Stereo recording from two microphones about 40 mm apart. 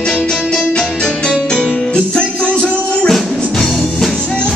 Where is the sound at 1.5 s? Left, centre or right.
Left.